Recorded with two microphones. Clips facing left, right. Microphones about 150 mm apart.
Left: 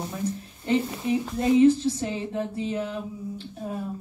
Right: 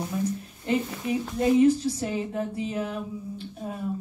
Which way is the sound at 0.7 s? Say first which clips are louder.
Left 2 dB; 30° left (ahead or behind).